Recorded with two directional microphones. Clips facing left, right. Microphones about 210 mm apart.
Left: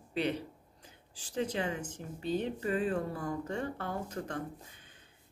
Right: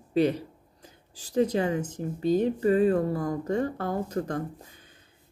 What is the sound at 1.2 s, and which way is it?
Speech, 40° right (ahead or behind).